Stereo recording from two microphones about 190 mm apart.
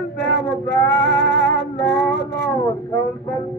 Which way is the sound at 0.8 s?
65° right (ahead or behind).